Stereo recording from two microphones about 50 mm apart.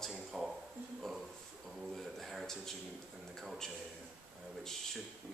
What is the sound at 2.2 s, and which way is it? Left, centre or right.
Speech, centre.